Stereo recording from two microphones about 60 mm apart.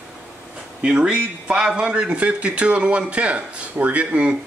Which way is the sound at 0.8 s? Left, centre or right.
Centre.